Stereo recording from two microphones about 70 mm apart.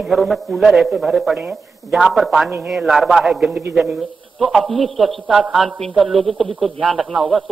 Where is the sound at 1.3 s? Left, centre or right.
Right.